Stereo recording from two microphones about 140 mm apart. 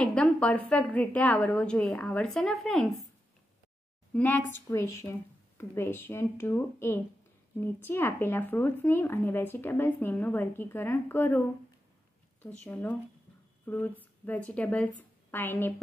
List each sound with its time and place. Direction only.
0.0 s speech: 5° left (ahead or behind)
4.1 s a woman's voice: 10° left (ahead or behind)